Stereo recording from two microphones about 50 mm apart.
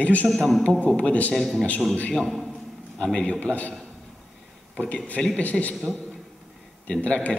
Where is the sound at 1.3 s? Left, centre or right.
Centre.